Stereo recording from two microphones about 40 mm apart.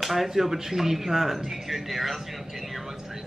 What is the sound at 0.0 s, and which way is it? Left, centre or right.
Speech, centre.